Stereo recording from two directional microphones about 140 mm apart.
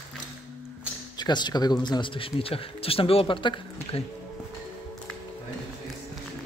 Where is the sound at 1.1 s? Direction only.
30° left (ahead or behind).